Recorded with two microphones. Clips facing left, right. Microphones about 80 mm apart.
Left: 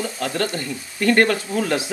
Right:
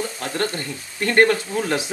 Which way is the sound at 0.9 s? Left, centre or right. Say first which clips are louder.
Even; right.